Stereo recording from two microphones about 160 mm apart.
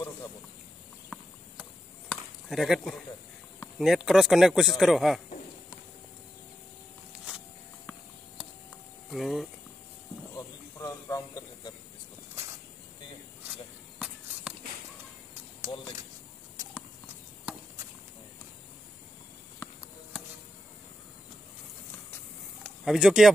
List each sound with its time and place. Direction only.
2.0 s chop: centre (ahead or behind)
3.7 s speech: centre (ahead or behind)
9.1 s speech: centre (ahead or behind)
10.3 s snake: 20° left (ahead or behind)
15.7 s a sound: 35° left (ahead or behind)
22.8 s speech: centre (ahead or behind)